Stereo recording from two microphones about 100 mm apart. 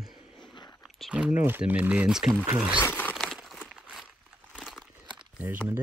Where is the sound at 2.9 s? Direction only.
15° left (ahead or behind).